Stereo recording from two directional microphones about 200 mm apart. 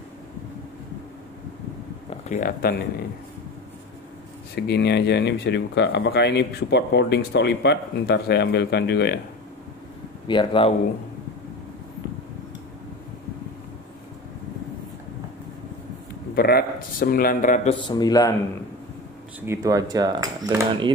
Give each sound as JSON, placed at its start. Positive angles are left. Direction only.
{"t": 2.0, "sound": "speech", "side_deg": 35}
{"t": 4.6, "sound": "speech", "side_deg": 55}
{"t": 10.2, "sound": "speech", "side_deg": 25}
{"t": 16.3, "sound": "speech", "side_deg": 50}
{"t": 17.7, "sound": "speech", "side_deg": 20}
{"t": 19.4, "sound": "speech", "side_deg": -15}